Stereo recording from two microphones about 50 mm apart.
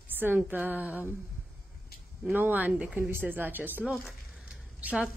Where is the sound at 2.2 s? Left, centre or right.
Right.